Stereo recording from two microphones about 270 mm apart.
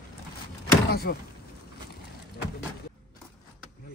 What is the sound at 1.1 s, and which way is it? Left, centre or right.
Speech, left.